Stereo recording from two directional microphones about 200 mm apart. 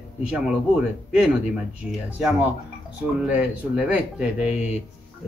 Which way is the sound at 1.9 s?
5° right (ahead or behind).